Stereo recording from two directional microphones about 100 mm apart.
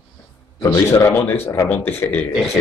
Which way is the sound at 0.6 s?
30° left (ahead or behind).